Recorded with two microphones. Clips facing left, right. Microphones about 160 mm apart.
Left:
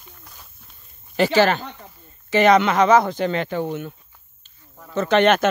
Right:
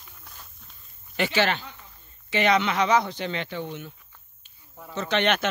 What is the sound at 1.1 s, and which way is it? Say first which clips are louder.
Speech: left 7 dB; 40° left (ahead or behind).